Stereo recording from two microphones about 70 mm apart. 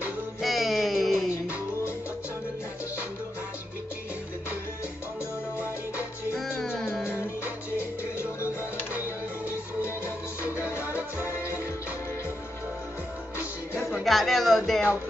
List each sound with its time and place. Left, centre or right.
0.4 s music: centre
1.3 s music: left
6.3 s music: centre
9.5 s music: left
10.8 s music: right
14.0 s music: centre